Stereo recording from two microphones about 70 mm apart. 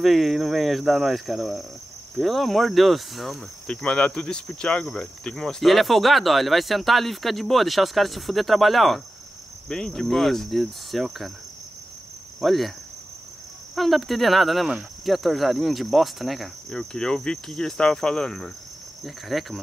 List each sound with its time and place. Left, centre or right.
0.0 s speech: centre
3.7 s speech: centre
12.4 s speech: centre
13.7 s speech: centre
16.7 s cricket: centre
19.0 s speech: centre